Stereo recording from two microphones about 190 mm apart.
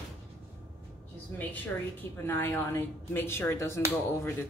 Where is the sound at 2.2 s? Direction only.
10° left (ahead or behind).